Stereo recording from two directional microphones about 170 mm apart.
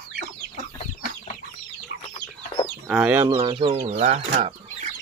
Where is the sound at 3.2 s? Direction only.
25° right (ahead or behind).